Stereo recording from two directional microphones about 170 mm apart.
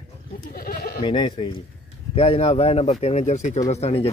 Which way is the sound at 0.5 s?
60° left (ahead or behind).